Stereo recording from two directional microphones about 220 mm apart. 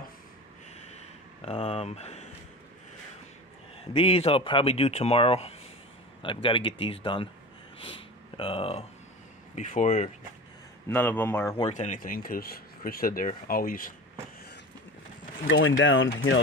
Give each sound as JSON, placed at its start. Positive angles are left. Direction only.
{"t": 0.7, "sound": "a sound", "side_deg": 30}
{"t": 3.8, "sound": "speech", "side_deg": 25}
{"t": 10.9, "sound": "speech", "side_deg": 10}
{"t": 11.5, "sound": "speech", "side_deg": 30}
{"t": 15.5, "sound": "speech", "side_deg": 60}